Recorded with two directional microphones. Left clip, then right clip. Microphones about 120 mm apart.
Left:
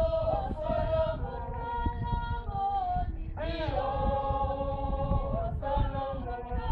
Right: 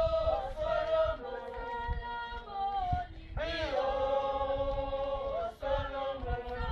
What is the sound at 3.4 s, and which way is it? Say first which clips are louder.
Chant: even; 35° right (ahead or behind).